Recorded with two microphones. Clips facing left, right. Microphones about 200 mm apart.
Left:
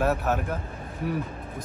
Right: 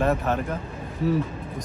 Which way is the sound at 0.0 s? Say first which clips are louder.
Right 2 dB; 5° left (ahead or behind).